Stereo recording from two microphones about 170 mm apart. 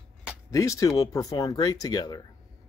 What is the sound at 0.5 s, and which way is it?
Speech, 20° left (ahead or behind).